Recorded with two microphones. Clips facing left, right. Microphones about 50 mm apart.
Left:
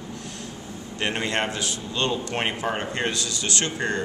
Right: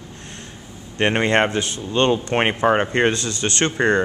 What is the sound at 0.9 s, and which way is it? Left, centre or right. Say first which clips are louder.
Speech: right 8 dB; right.